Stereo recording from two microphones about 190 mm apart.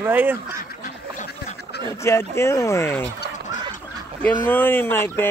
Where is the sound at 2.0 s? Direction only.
15° left (ahead or behind).